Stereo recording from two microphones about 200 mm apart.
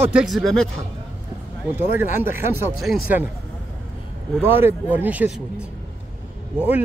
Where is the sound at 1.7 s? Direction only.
10° right (ahead or behind).